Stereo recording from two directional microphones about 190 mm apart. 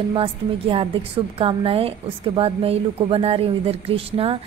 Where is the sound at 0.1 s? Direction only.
30° right (ahead or behind).